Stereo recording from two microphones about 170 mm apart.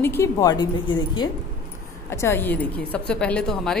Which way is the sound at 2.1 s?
15° left (ahead or behind).